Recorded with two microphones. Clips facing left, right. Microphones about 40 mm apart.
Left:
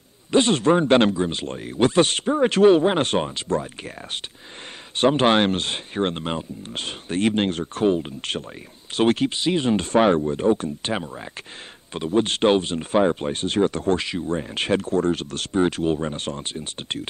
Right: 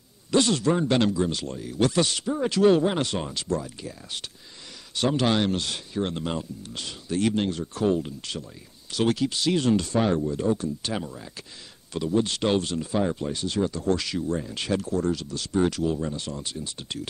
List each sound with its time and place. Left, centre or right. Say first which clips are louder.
0.3 s speech: left 4 dB; left
9.4 s speech: left 2 dB; left
9.9 s speech: left 6 dB; left
13.9 s speech: left 3 dB; left
15.5 s speech: left 3 dB; left